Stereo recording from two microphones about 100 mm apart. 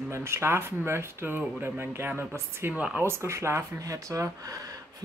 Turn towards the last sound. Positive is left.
turn(degrees=-30)  # may be behind; listen again after turning